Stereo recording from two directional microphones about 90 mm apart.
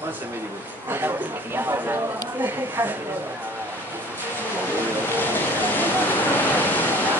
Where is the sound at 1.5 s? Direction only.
25° right (ahead or behind).